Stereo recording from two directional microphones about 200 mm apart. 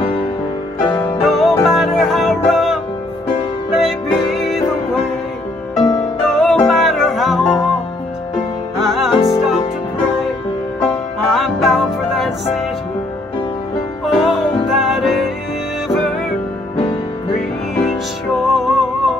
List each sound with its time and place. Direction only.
0.8 s music: 10° left (ahead or behind)
5.8 s music: 20° left (ahead or behind)
6.2 s music: centre (ahead or behind)
8.7 s music: centre (ahead or behind)
9.1 s music: 25° left (ahead or behind)
10.8 s music: centre (ahead or behind)
14.0 s music: centre (ahead or behind)
18.5 s music: centre (ahead or behind)